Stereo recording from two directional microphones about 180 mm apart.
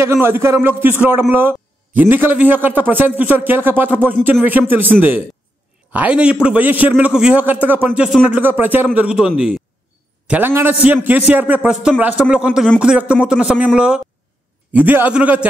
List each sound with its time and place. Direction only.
0.0 s a man's voice: 15° right (ahead or behind)
5.9 s a man's voice: 5° right (ahead or behind)